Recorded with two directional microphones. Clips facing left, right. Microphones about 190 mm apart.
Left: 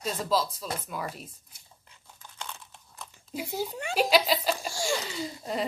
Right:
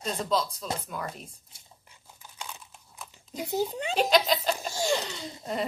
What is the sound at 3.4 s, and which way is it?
Speech, 20° right (ahead or behind).